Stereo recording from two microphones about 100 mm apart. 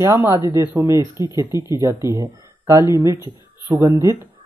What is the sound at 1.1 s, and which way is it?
Speech, 45° left (ahead or behind).